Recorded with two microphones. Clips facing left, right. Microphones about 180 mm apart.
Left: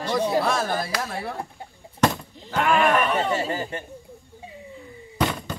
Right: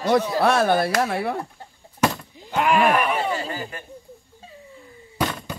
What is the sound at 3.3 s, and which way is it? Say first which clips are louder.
Speech: left 3 dB; 25° left (ahead or behind).